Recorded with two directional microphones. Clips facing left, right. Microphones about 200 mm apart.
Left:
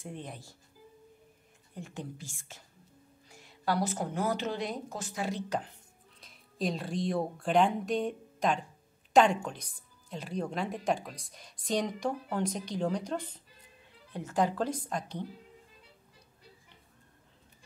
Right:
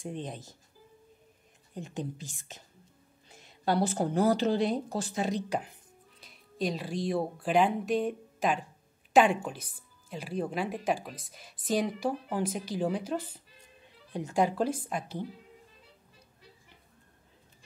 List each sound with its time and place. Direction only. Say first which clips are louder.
0.0 s a woman's voice: right 5 dB; 20° right (ahead or behind)
1.8 s a woman's voice: right 4 dB; 20° right (ahead or behind)
6.2 s a woman's voice: right 1 dB; centre (ahead or behind)